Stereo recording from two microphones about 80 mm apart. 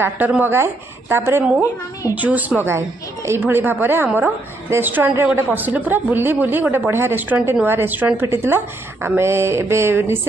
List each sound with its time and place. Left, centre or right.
0.4 s a woman's voice: right